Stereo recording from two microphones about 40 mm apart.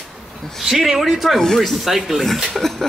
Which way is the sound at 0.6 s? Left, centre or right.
Centre.